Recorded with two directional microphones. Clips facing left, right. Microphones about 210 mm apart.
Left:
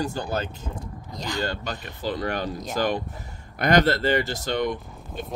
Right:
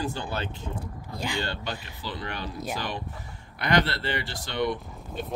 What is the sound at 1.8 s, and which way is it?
Speech, 45° left (ahead or behind).